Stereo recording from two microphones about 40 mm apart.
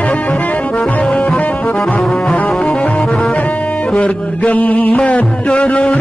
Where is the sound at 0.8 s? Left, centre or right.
Left.